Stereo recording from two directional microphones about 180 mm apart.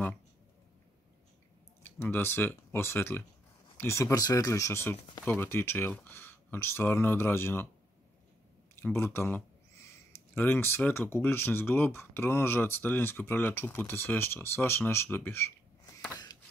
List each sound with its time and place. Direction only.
1.8 s speech: 10° left (ahead or behind)
8.7 s speech: 15° left (ahead or behind)